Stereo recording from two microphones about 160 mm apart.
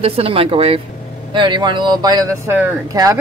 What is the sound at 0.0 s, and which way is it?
Speech, 40° right (ahead or behind).